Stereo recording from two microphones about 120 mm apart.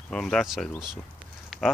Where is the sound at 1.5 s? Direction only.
Centre (ahead or behind).